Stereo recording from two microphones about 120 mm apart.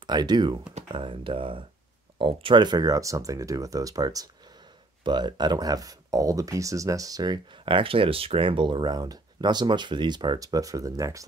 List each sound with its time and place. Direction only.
0.0 s speech: 35° right (ahead or behind)